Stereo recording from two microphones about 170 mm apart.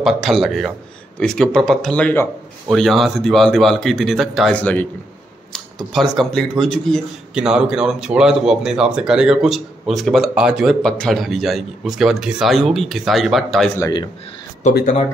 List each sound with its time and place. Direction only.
0.0 s speech: centre (ahead or behind)
13.7 s a man's voice: 20° left (ahead or behind)
14.7 s speech: 45° left (ahead or behind)